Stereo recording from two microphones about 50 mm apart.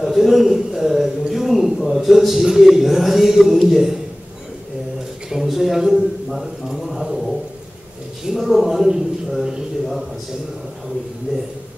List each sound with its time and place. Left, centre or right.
0.0 s a man's voice: centre
5.3 s a man's voice: centre